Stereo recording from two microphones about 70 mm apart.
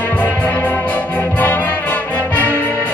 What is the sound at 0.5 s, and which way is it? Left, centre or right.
Brass instrument, left.